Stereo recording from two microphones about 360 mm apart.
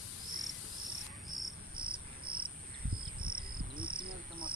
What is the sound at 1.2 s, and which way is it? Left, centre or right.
Cricket, centre.